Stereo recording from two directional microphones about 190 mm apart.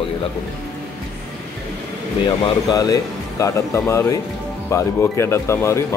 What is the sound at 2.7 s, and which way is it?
Speech, 20° left (ahead or behind).